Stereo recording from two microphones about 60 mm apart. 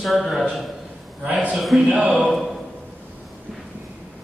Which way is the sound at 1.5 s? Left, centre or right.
Centre.